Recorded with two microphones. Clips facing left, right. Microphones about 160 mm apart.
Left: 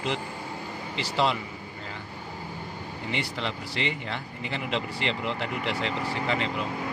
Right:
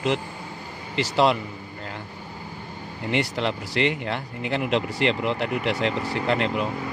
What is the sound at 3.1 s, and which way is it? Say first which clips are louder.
Speech: right 7 dB; 65° right (ahead or behind).